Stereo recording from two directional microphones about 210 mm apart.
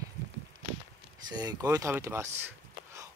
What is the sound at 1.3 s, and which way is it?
Speech, 20° right (ahead or behind).